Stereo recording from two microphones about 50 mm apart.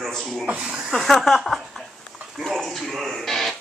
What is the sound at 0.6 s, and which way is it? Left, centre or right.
Speech, centre.